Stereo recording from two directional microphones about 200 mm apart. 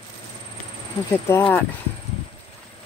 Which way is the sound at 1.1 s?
15° left (ahead or behind).